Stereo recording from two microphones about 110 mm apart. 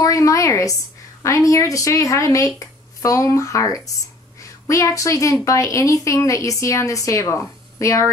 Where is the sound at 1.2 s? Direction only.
25° left (ahead or behind).